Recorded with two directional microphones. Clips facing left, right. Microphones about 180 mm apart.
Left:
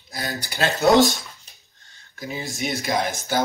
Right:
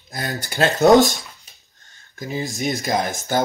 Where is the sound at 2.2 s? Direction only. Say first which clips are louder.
Right 4 dB; 45° right (ahead or behind).